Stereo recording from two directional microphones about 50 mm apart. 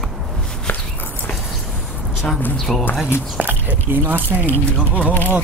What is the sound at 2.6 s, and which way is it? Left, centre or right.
Speech, centre.